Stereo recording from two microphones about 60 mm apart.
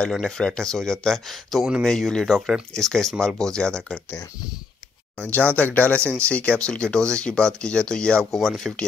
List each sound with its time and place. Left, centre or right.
0.2 s speech: centre
5.3 s speech: left; by 8.8 s centre